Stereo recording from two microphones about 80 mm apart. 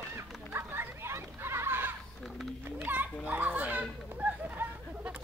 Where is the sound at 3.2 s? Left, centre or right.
Centre.